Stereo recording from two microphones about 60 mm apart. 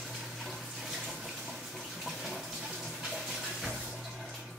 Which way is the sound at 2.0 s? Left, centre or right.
Centre.